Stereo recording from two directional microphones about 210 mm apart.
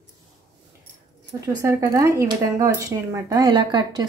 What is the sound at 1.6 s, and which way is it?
Speech, 15° right (ahead or behind).